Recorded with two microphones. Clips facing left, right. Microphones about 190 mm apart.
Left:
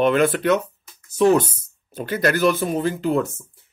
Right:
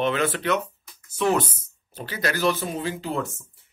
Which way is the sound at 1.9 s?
50° left (ahead or behind).